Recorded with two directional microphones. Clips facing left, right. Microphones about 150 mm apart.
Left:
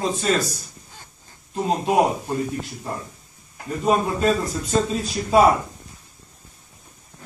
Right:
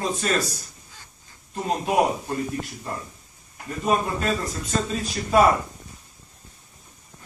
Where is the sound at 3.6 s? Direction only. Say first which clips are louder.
Left 3 dB; 30° left (ahead or behind).